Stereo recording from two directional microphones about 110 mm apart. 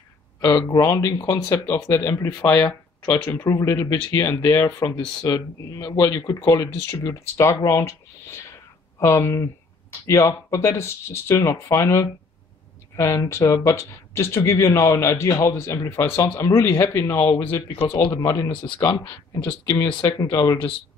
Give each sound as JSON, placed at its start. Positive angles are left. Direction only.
{"t": 0.4, "sound": "speech", "side_deg": 35}
{"t": 20.2, "sound": "speech", "side_deg": 30}